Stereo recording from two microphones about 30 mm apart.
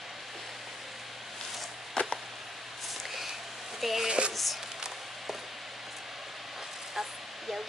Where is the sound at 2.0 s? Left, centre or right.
Left.